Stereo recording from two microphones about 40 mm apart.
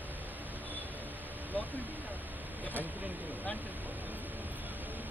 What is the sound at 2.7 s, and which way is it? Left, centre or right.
Vehicle, right.